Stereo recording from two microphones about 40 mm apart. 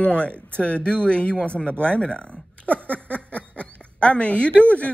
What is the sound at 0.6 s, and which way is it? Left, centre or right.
Speech, left.